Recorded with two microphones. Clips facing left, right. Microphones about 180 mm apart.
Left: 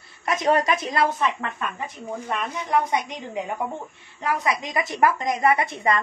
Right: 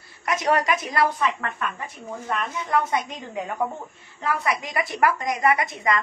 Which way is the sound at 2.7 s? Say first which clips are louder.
Left 1 dB; 15° left (ahead or behind).